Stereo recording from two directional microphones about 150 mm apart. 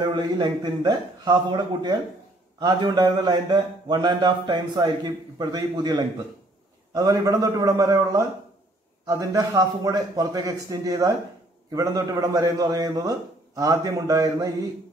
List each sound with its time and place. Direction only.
0.1 s speech: 25° right (ahead or behind)